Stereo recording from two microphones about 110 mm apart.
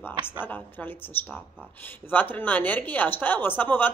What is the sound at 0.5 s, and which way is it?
Speech, 15° left (ahead or behind).